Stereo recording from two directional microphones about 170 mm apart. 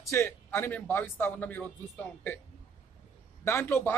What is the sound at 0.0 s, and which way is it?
Speech, 15° left (ahead or behind).